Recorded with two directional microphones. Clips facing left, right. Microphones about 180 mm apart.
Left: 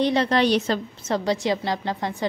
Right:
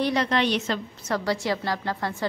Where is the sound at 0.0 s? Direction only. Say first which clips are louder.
Left 3 dB; 30° left (ahead or behind).